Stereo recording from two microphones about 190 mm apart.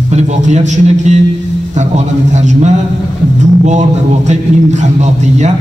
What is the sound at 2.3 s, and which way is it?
Speech, 40° right (ahead or behind).